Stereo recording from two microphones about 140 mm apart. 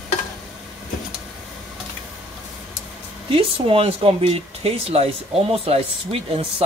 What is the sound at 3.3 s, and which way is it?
Speech, 40° right (ahead or behind).